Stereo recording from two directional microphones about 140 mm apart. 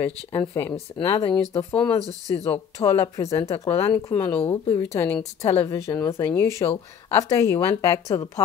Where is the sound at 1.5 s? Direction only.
15° left (ahead or behind).